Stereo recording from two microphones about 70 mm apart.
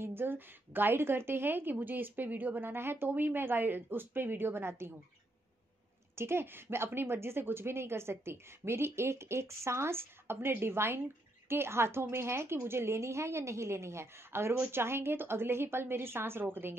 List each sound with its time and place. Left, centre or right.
0.0 s a woman's voice: right
6.1 s a woman's voice: right